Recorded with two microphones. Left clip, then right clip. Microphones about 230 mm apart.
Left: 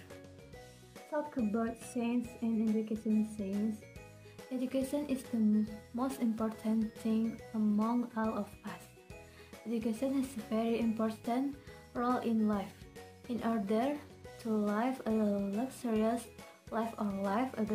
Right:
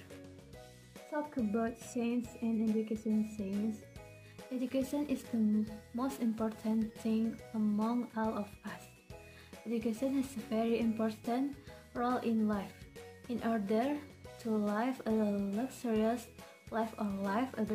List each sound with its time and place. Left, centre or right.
1.1 s speech: centre
4.6 s speech: centre